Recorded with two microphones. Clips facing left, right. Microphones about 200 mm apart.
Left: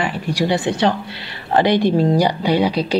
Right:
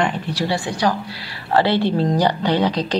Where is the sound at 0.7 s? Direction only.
25° left (ahead or behind).